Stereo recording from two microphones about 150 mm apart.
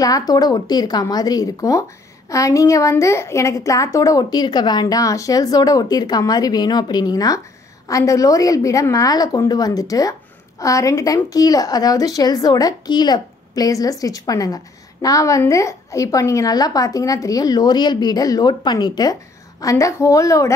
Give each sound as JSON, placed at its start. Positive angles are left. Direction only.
{"t": 0.0, "sound": "a woman's voice", "side_deg": 25}